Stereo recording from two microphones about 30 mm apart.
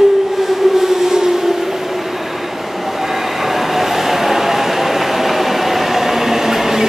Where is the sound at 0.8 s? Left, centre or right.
Centre.